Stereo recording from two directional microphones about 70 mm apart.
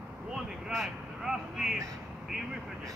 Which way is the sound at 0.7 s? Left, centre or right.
Centre.